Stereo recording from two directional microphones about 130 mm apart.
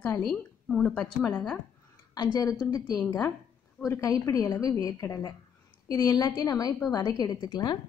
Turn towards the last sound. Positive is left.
turn(degrees=30)  # may be behind; listen again after turning